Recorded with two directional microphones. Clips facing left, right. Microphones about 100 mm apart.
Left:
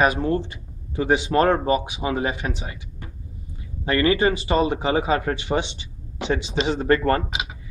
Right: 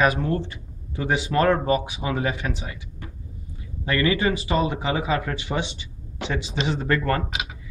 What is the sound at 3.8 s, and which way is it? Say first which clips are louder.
Speech: left 3 dB; 35° left (ahead or behind).